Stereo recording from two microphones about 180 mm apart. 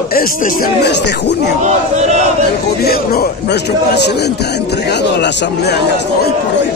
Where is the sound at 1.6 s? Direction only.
40° right (ahead or behind).